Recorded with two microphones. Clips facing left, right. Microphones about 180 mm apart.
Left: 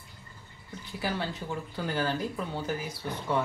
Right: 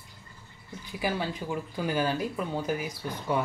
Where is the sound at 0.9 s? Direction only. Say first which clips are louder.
Right 2 dB; 15° right (ahead or behind).